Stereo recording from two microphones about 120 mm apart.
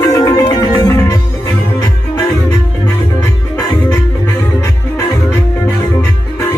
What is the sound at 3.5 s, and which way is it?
Music, 30° left (ahead or behind).